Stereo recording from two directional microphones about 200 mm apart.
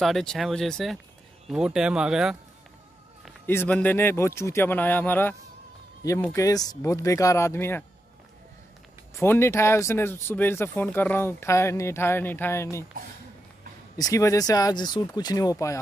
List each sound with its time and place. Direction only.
0.0 s speech: centre (ahead or behind)
3.4 s speech: 10° left (ahead or behind)
9.2 s speech: 10° left (ahead or behind)
13.9 s speech: 15° left (ahead or behind)